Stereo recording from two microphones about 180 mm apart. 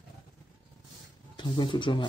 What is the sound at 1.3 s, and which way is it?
Speech, 25° left (ahead or behind).